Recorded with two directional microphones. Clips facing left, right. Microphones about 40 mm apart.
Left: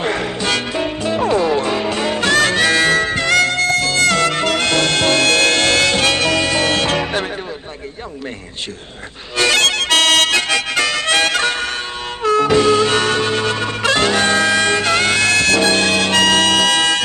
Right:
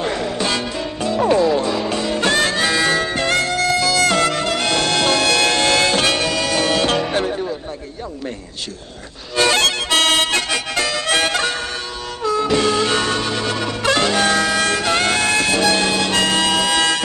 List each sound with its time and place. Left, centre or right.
0.0 s music: left
0.5 s music: left
1.2 s music: left
2.1 s harmonica: left
3.2 s music: left
9.4 s harmonica: left
12.2 s music: left
12.8 s music: left
14.6 s music: left
14.9 s music: left
15.6 s music: left
16.7 s music: left